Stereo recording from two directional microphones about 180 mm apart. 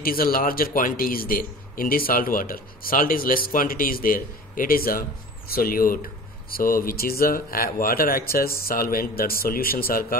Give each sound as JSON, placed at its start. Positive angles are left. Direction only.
{"t": 0.0, "sound": "a man's voice", "side_deg": 55}